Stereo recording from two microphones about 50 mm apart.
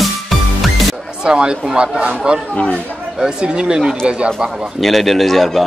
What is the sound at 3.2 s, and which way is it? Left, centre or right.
A man's voice, centre.